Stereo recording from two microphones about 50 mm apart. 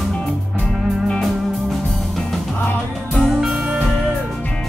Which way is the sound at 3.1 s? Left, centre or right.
Centre.